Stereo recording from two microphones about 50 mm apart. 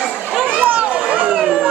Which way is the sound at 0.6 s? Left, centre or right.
Right.